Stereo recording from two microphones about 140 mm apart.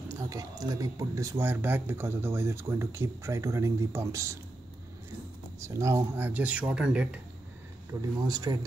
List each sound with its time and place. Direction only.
0.1 s speech: 25° right (ahead or behind)
5.6 s speech: 20° right (ahead or behind)
8.3 s speech: 30° right (ahead or behind)